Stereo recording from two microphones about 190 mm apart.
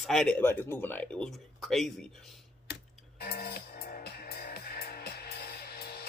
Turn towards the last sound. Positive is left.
turn(degrees=55)  # may be behind; listen again after turning